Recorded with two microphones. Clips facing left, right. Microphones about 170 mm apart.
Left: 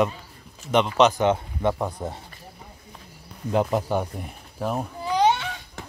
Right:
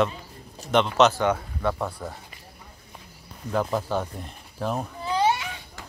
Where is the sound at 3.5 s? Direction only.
15° left (ahead or behind).